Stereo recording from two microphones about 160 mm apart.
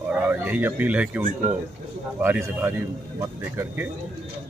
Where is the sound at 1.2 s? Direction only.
45° right (ahead or behind).